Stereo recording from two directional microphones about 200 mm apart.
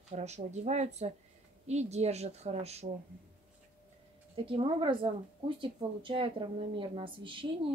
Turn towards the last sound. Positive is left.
turn(degrees=-25)  # may be behind; listen again after turning